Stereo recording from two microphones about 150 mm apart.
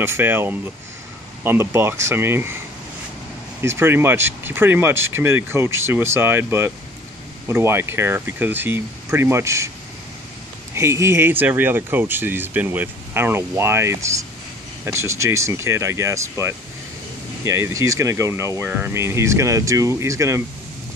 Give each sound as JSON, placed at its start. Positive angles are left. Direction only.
{"t": 0.0, "sound": "speech", "side_deg": -15}
{"t": 3.6, "sound": "speech", "side_deg": -15}
{"t": 10.7, "sound": "speech", "side_deg": -20}